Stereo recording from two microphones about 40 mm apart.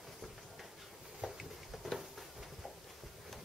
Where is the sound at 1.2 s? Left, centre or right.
Centre.